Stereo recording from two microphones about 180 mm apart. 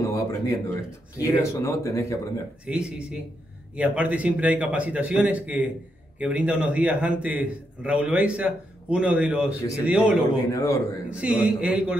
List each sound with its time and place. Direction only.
0.0 s a sound: 20° left (ahead or behind)
1.1 s speech: 15° left (ahead or behind)
2.6 s a man's voice: 5° right (ahead or behind)
10.5 s speech: 20° left (ahead or behind)
11.1 s a man's voice: 5° right (ahead or behind)